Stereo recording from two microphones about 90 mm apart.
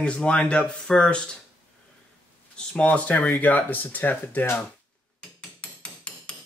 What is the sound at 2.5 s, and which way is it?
Speech, 15° left (ahead or behind).